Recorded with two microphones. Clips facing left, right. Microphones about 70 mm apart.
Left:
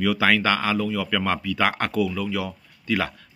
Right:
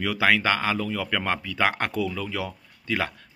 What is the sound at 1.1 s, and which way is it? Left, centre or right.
Speech, right.